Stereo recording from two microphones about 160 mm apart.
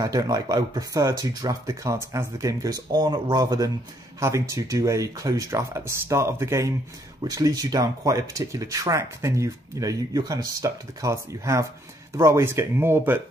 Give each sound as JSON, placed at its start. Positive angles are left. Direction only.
{"t": 0.0, "sound": "speech", "side_deg": -25}